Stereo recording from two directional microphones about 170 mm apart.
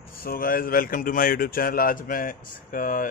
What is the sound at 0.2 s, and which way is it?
A man's voice, 60° left (ahead or behind).